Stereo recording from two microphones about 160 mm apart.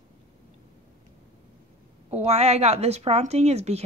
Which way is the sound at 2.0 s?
40° right (ahead or behind).